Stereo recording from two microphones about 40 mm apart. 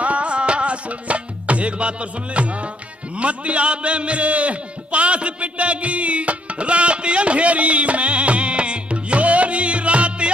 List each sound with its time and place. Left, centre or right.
0.0 s music: right
3.2 s a man's voice: right